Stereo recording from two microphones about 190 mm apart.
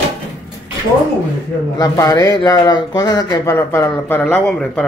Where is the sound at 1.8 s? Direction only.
20° left (ahead or behind).